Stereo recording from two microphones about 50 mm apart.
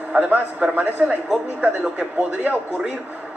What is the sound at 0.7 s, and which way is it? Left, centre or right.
A man's voice, right.